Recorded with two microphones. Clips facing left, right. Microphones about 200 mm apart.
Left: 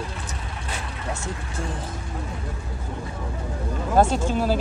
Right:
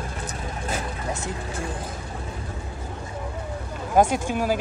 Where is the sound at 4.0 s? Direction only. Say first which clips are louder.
Even; 15° right (ahead or behind).